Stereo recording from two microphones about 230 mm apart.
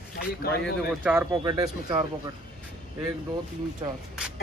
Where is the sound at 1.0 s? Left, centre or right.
Centre.